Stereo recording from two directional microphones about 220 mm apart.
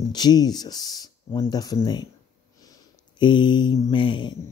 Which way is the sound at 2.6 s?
20° left (ahead or behind).